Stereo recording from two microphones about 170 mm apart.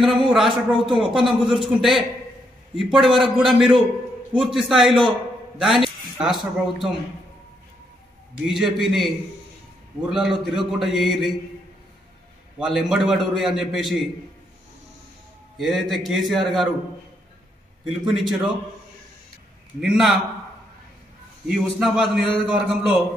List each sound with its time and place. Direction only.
0.0 s a man's voice: centre (ahead or behind)
8.5 s a man's voice: 5° right (ahead or behind)
12.5 s a man's voice: 5° right (ahead or behind)
15.5 s a man's voice: centre (ahead or behind)
17.8 s a man's voice: centre (ahead or behind)
19.8 s a man's voice: 5° right (ahead or behind)
21.5 s a man's voice: 5° right (ahead or behind)